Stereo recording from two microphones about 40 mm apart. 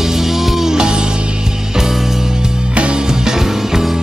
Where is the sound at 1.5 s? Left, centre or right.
Centre.